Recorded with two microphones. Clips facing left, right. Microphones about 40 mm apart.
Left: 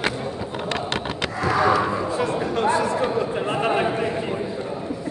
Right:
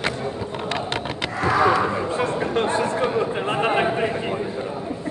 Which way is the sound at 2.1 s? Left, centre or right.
Right.